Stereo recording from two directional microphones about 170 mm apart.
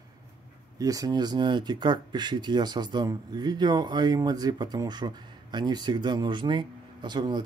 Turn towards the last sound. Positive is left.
turn(degrees=-25)  # may be behind; listen again after turning